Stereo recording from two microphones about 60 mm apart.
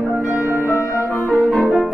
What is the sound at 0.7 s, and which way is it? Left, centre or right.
Music, left.